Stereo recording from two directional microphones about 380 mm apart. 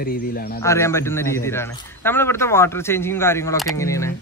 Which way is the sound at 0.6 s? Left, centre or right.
Centre.